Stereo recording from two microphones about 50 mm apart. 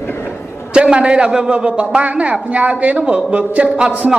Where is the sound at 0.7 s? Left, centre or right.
Centre.